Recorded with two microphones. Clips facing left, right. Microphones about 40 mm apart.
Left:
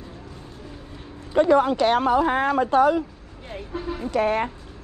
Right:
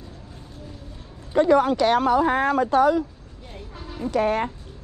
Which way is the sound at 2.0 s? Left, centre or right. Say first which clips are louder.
Even; left.